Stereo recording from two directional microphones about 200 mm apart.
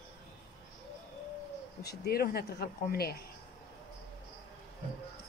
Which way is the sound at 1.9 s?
50° left (ahead or behind).